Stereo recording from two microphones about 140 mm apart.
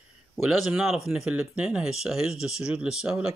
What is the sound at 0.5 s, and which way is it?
Speech, 5° right (ahead or behind).